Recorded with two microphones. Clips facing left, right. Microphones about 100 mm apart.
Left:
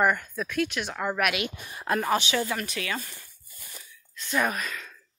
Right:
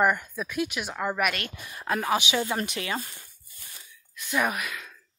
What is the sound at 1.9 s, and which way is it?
Speech, 5° right (ahead or behind).